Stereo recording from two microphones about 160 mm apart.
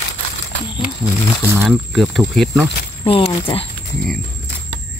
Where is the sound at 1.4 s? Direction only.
15° right (ahead or behind).